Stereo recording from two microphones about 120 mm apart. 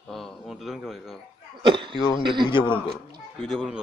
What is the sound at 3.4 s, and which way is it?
Speech, centre (ahead or behind).